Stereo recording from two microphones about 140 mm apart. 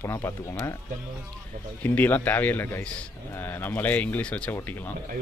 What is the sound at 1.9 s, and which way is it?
Speech, 10° left (ahead or behind).